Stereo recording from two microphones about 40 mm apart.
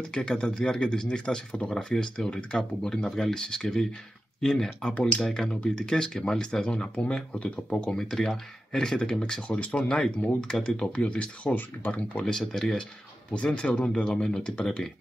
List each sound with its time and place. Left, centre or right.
0.1 s speech: left
5.5 s speech: left
6.7 s speech: left
8.0 s speech: centre; by 9.6 s left
9.8 s speech: centre
10.5 s speech: left
12.3 s speech: centre
13.3 s speech: left